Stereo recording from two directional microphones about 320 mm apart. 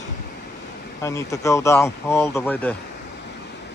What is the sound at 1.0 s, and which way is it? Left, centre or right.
Speech, centre.